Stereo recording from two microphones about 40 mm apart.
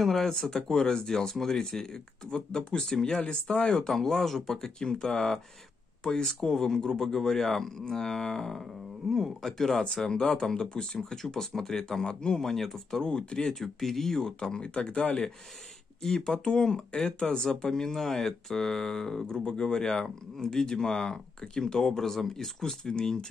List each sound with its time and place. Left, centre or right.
0.0 s speech: centre
6.5 s speech: centre
12.4 s speech: centre
13.0 s speech: left
13.6 s speech: centre; by 15.1 s left
16.0 s speech: centre